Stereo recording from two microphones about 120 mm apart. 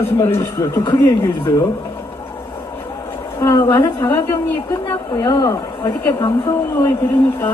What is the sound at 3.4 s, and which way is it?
Speech, 25° left (ahead or behind).